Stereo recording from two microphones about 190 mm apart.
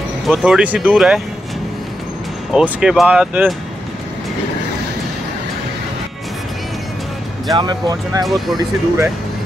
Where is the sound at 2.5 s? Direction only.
5° right (ahead or behind).